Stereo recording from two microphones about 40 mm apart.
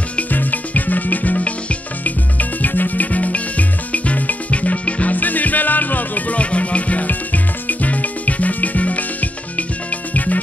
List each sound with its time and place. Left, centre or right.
0.3 s music: left
5.1 s music: left